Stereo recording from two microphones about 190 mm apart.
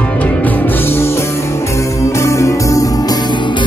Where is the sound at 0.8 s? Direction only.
10° left (ahead or behind).